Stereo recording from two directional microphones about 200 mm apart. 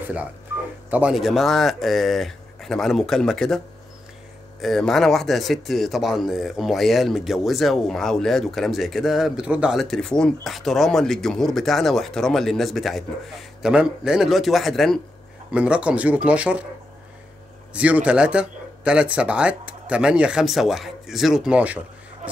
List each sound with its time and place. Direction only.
0.8 s speech: 5° right (ahead or behind)
17.7 s speech: 5° right (ahead or behind)